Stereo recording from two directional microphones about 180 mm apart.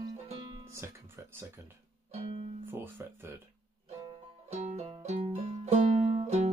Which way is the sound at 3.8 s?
35° right (ahead or behind).